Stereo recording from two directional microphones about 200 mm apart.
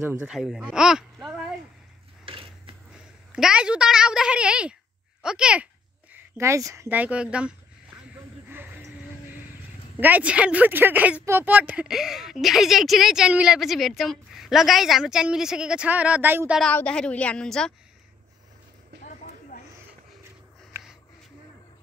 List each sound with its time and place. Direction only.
0.0 s speech: 10° right (ahead or behind)
0.3 s speech: centre (ahead or behind)
2.2 s mechanisms: 25° right (ahead or behind)
3.3 s speech: 5° right (ahead or behind)
8.5 s a sound: 10° right (ahead or behind)
9.9 s speech: 10° right (ahead or behind)
16.6 s speech: 5° left (ahead or behind)
19.5 s a sound: 40° left (ahead or behind)